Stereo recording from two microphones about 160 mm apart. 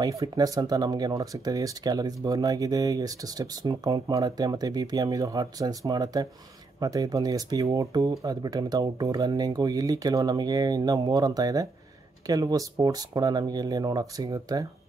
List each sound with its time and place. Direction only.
0.0 s speech: 20° right (ahead or behind)